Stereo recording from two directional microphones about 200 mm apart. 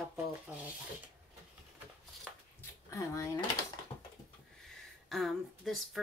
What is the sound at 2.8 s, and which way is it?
Speech, 15° left (ahead or behind).